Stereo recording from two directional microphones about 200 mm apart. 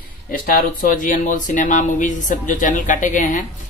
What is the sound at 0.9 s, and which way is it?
Speech, 40° left (ahead or behind).